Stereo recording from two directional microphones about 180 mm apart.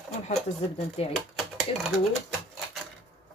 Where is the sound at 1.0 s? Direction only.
35° left (ahead or behind).